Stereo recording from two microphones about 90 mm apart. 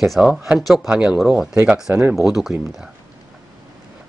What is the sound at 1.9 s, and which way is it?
Speech, 20° right (ahead or behind).